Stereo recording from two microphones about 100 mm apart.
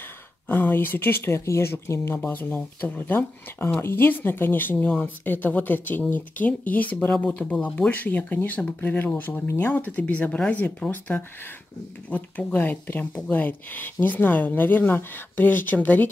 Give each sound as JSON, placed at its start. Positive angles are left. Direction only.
{"t": 0.5, "sound": "speech", "side_deg": 20}